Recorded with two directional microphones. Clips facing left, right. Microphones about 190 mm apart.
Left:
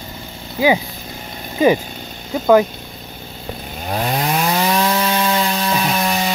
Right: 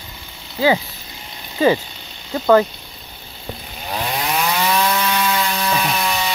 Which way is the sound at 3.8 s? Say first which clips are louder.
Left 3 dB; 45° left (ahead or behind).